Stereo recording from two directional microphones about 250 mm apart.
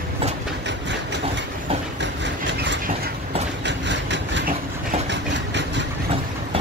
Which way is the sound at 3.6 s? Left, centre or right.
Right.